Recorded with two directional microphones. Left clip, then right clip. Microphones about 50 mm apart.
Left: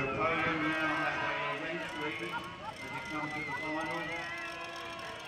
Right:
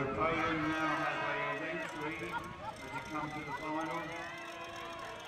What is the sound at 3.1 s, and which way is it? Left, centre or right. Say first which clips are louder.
Speech: left 4 dB; left.